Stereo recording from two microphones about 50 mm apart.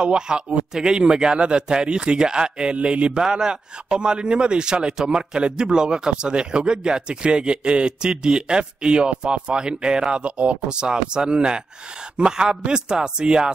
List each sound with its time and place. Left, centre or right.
0.0 s speech: centre